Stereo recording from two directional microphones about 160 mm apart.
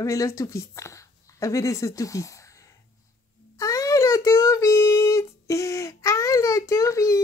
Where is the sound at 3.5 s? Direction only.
20° left (ahead or behind).